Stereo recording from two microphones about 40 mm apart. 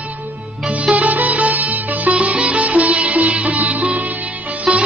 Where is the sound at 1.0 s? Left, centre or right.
Right.